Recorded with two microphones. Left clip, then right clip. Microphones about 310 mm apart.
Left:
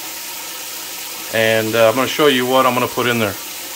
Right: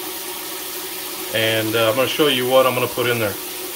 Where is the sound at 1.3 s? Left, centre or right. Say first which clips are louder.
Left 4 dB; centre.